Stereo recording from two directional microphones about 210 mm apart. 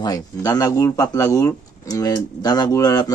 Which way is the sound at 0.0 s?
15° left (ahead or behind).